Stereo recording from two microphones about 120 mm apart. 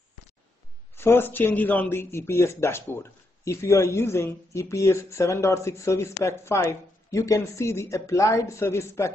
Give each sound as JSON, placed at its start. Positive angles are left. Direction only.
{"t": 0.9, "sound": "speech", "side_deg": 20}